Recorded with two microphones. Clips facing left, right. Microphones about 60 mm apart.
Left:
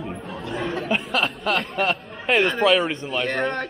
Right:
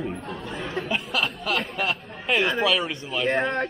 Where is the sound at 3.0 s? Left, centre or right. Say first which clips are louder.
Even; centre.